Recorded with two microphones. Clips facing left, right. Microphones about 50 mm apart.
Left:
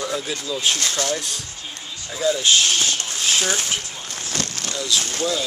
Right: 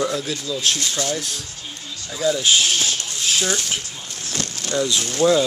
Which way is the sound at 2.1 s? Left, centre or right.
Centre.